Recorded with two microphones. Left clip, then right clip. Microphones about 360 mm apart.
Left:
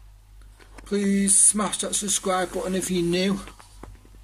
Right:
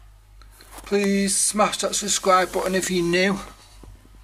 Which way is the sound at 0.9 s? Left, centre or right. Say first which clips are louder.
Right 3 dB; centre.